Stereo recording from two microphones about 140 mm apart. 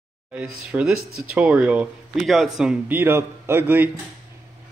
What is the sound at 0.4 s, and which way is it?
Speech, 5° right (ahead or behind).